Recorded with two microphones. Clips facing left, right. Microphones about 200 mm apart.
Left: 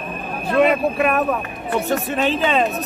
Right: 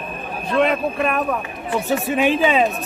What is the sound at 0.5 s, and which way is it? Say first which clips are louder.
Speech: left 2 dB; 5° left (ahead or behind).